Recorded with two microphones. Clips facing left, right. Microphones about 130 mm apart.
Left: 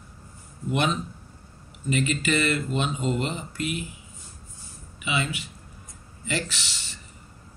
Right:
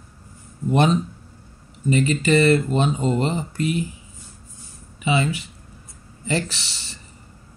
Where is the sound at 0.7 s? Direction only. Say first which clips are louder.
Right 7 dB; 35° right (ahead or behind).